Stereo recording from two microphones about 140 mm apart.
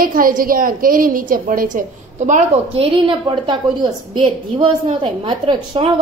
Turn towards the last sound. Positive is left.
turn(degrees=-35)  # may be behind; listen again after turning